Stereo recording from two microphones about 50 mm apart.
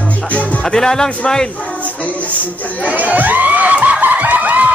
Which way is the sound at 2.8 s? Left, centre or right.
Right.